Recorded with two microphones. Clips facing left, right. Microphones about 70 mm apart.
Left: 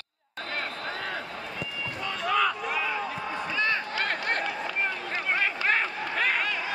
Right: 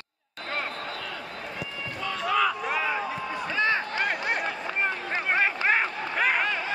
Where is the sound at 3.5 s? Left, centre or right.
Right.